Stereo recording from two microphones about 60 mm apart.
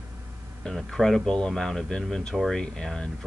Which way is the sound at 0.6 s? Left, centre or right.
Centre.